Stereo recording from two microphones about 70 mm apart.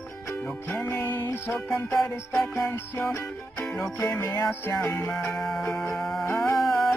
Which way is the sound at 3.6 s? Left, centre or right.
Centre.